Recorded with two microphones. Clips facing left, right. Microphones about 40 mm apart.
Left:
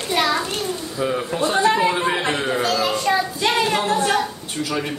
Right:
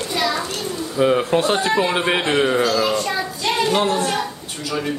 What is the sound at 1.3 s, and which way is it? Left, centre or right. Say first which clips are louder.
Speech: even; right.